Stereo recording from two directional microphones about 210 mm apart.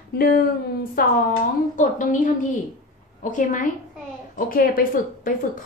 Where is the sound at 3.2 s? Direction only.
40° left (ahead or behind).